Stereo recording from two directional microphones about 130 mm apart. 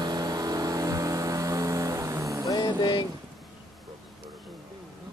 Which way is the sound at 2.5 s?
30° left (ahead or behind).